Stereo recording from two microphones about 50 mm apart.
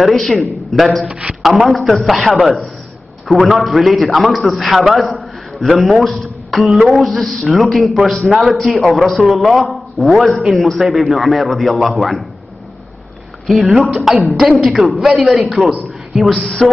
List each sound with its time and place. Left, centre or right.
0.0 s a man's voice: centre
1.0 s speech: right
1.4 s a man's voice: centre
6.7 s speech: centre
7.0 s a man's voice: centre
13.5 s a man's voice: centre